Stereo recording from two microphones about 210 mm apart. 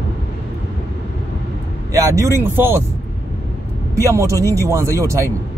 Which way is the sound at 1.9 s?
15° right (ahead or behind).